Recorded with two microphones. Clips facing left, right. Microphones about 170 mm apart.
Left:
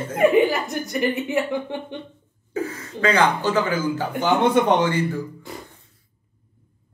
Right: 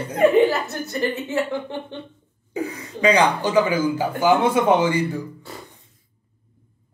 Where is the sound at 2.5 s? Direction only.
15° right (ahead or behind).